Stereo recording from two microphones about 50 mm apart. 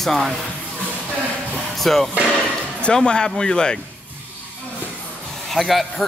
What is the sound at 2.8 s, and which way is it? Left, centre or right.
Speech, centre.